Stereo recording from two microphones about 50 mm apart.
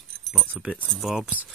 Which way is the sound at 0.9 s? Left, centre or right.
Centre.